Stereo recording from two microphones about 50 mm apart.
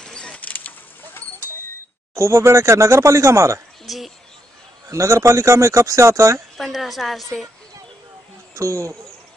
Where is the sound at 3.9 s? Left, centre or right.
Centre.